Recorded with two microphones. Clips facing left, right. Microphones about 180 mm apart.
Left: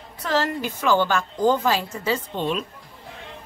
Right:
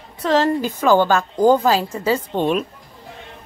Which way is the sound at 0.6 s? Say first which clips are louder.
Right 5 dB; 45° right (ahead or behind).